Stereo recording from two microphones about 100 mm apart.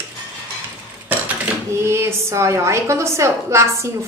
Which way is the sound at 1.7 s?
25° right (ahead or behind).